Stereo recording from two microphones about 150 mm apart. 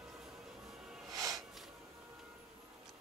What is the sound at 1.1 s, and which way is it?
Music, 25° right (ahead or behind).